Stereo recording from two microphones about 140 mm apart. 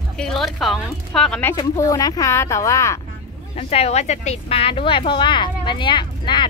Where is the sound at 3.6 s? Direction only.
50° left (ahead or behind); by 6.5 s 35° left (ahead or behind).